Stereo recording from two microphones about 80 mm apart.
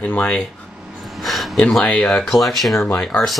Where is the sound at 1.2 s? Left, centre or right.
Centre.